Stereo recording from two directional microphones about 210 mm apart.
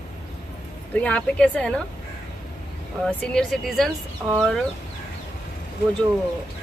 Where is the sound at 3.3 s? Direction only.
Centre (ahead or behind).